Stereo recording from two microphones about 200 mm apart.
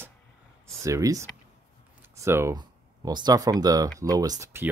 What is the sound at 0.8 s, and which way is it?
Speech, 15° right (ahead or behind).